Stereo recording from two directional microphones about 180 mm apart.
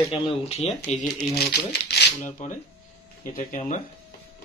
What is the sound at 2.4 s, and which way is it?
Speech, 40° left (ahead or behind).